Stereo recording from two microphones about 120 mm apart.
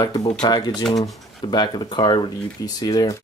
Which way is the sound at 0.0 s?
35° left (ahead or behind).